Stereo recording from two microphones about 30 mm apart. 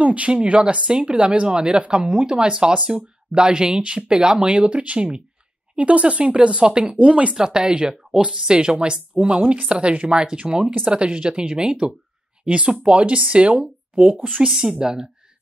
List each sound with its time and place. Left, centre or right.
0.0 s speech: right
0.9 s speech: right
7.3 s speech: right
8.5 s speech: right
14.5 s speech: right